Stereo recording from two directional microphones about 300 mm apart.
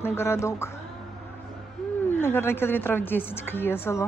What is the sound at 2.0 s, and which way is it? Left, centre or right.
A woman's voice, centre.